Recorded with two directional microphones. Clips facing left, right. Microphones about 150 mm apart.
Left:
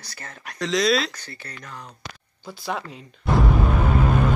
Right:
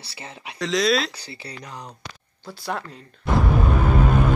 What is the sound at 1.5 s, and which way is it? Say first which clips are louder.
Speech: right 3 dB; 15° right (ahead or behind).